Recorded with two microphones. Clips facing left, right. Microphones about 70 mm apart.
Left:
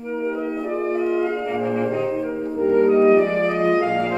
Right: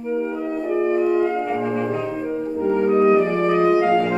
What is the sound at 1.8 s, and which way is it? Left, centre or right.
Music, centre.